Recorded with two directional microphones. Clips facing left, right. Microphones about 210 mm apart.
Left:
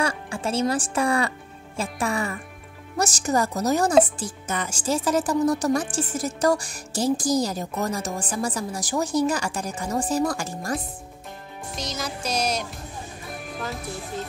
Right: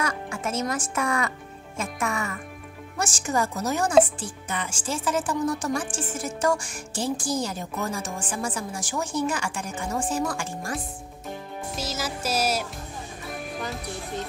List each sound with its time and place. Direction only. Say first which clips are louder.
0.0 s speech: left 3 dB; 30° left (ahead or behind)
11.7 s music: even; 5° right (ahead or behind)